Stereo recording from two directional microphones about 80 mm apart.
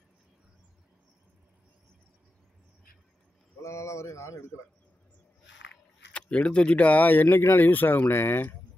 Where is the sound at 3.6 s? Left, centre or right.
Left.